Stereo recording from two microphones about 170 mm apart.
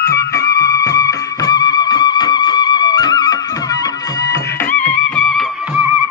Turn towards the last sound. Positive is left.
turn(degrees=5)  # may be behind; listen again after turning